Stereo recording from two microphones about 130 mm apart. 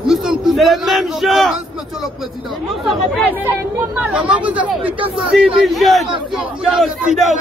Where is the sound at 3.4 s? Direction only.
10° right (ahead or behind).